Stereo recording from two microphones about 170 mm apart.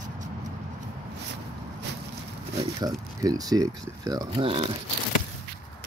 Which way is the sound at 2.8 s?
20° right (ahead or behind).